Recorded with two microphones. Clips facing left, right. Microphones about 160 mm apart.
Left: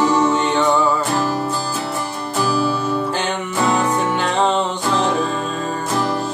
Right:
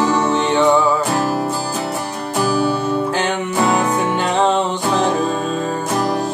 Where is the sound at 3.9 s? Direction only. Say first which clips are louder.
Right 1 dB; 10° right (ahead or behind).